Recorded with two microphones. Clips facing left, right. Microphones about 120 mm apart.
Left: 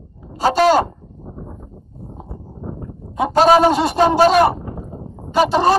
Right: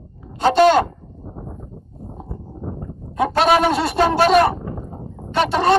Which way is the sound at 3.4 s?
35° left (ahead or behind).